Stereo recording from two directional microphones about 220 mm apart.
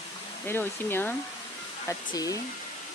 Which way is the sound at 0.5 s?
10° left (ahead or behind).